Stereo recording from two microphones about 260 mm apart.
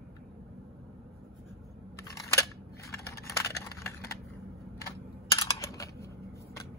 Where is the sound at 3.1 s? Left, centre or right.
Centre.